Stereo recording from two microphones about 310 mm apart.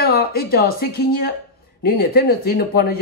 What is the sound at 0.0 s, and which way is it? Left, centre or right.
Speech, left.